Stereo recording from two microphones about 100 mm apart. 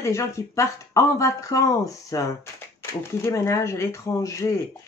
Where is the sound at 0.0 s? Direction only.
30° left (ahead or behind).